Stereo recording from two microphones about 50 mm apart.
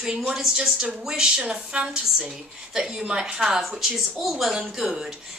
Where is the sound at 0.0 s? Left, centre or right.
Centre.